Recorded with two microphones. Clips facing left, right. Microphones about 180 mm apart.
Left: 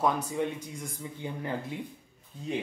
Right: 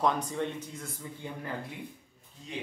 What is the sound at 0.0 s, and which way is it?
Speech, 10° left (ahead or behind).